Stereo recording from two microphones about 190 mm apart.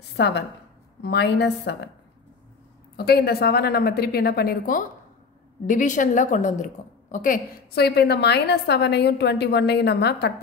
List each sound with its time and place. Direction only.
0.1 s a woman's voice: 65° left (ahead or behind)
3.1 s a woman's voice: 55° left (ahead or behind)